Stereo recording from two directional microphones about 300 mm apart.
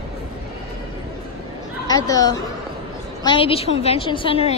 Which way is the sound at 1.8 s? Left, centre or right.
Centre.